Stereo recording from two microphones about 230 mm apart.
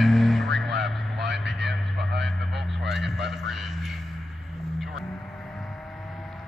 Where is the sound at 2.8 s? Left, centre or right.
Centre.